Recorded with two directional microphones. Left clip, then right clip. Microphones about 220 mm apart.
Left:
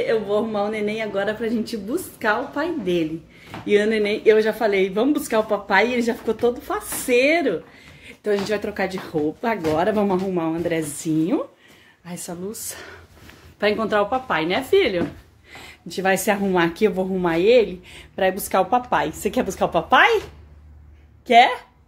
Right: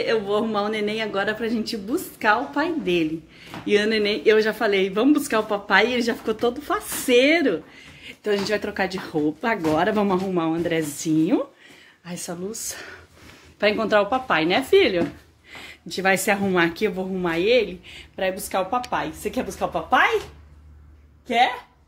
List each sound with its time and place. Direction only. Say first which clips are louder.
0.0 s a woman's voice: left 1 dB; 15° right (ahead or behind)
15.5 s a woman's voice: even; 5° left (ahead or behind); by 20.1 s 45° left (ahead or behind)